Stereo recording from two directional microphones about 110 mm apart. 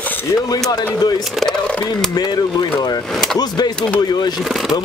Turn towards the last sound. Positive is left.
turn(degrees=40)  # may be behind; listen again after turning